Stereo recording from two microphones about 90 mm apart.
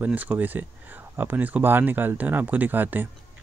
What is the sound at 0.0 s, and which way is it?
Speech, 20° right (ahead or behind).